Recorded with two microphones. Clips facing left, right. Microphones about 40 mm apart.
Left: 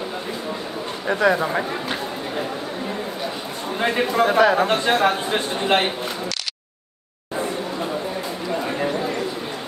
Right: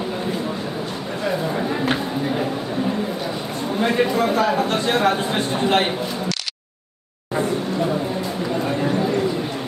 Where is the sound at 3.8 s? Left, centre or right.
Left.